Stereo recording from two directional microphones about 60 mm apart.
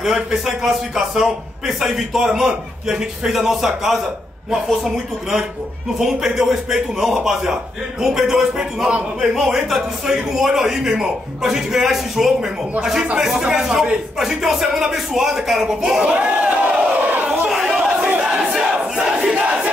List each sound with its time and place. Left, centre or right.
0.0 s a man's voice: centre; by 17.5 s right
17.5 s chatter: centre
18.4 s crowd: centre